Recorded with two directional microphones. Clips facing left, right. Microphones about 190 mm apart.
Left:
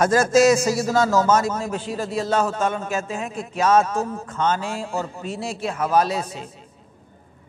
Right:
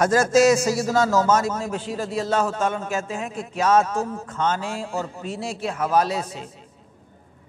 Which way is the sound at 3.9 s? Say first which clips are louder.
Left 1 dB; 25° left (ahead or behind).